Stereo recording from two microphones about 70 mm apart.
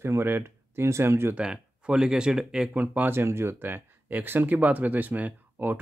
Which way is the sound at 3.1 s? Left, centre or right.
Right.